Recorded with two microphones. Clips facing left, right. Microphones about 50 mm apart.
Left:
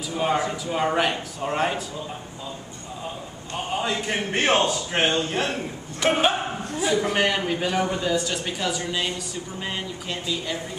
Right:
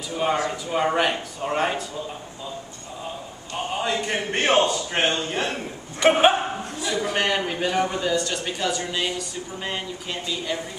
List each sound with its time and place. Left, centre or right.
0.1 s a man's voice: centre
3.5 s a man's voice: centre
6.0 s speech: centre
6.8 s a man's voice: centre